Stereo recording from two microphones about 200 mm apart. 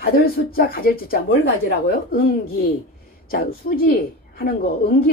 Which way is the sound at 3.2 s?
45° left (ahead or behind).